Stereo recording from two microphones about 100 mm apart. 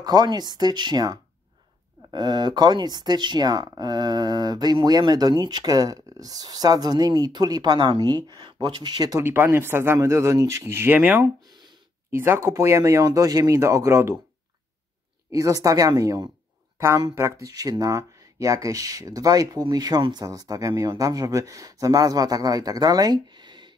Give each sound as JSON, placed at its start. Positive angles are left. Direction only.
{"t": 0.0, "sound": "speech", "side_deg": -40}
{"t": 9.2, "sound": "speech", "side_deg": -25}
{"t": 11.4, "sound": "a sound", "side_deg": -50}
{"t": 12.1, "sound": "speech", "side_deg": -25}
{"t": 15.3, "sound": "speech", "side_deg": -35}
{"t": 16.7, "sound": "speech", "side_deg": -25}